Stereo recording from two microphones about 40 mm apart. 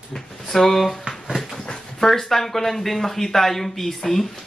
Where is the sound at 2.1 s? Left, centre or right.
Centre.